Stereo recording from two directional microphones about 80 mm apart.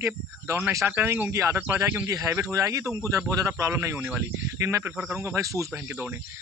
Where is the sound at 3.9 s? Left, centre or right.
Right.